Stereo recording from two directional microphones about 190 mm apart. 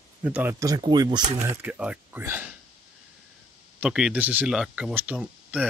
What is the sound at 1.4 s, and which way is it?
Speech, 5° right (ahead or behind).